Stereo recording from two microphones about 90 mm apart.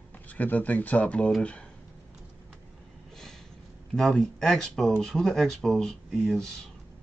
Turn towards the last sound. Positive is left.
turn(degrees=0)  # may be behind; listen again after turning